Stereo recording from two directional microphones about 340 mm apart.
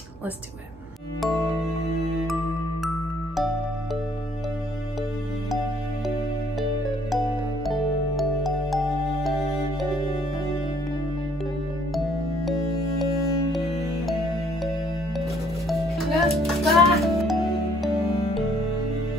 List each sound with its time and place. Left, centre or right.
8.2 s music: centre
15.7 s music: centre